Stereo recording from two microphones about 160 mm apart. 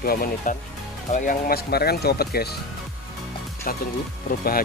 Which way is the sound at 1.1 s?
55° left (ahead or behind).